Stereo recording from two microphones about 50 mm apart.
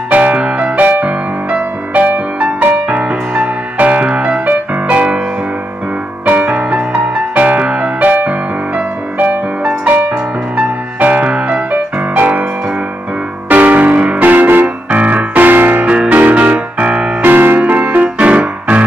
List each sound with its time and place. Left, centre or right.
0.1 s music: right
6.2 s music: right
8.1 s music: right
10.6 s music: right
11.7 s music: right
13.5 s keyboard: right
16.1 s music: right
17.2 s music: right